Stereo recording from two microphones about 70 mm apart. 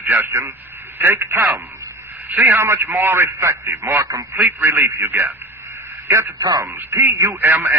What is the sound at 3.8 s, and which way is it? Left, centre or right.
Speech, right.